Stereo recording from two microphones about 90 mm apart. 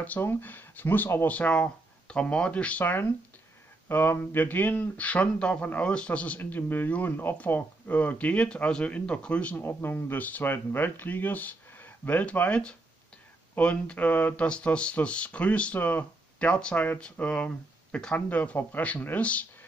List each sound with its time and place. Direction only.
0.0 s speech: 20° left (ahead or behind)
9.7 s speech: 25° left (ahead or behind)